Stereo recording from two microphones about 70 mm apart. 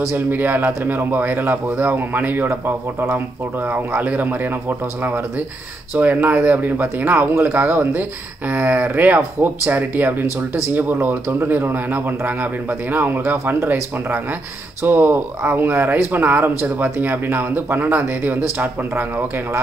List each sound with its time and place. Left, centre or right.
0.1 s speech: right
14.8 s speech: right